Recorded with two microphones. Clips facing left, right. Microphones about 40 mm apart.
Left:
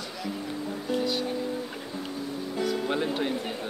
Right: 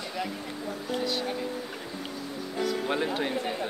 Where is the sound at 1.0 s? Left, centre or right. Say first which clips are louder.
Left 1 dB; centre.